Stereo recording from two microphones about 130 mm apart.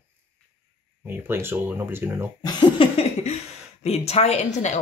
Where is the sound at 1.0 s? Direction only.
15° right (ahead or behind).